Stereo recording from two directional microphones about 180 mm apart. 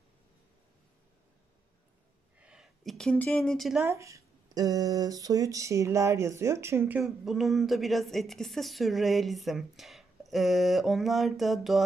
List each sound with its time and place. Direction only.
2.3 s speech: 5° right (ahead or behind)
3.8 s speech: 15° right (ahead or behind); by 11.8 s centre (ahead or behind)